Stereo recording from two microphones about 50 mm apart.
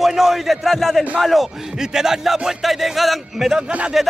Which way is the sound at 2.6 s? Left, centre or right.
Centre.